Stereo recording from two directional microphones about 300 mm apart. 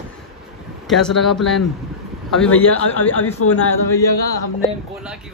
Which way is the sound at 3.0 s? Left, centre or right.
Left.